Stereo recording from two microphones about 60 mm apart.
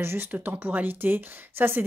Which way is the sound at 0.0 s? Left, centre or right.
Right.